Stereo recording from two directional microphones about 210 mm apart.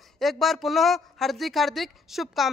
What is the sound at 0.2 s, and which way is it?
Speech, centre (ahead or behind).